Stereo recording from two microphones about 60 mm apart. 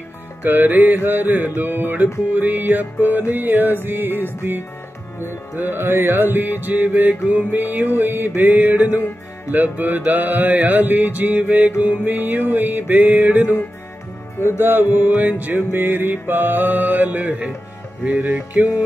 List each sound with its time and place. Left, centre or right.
0.4 s music: right
5.2 s music: left
5.7 s music: right
14.6 s music: right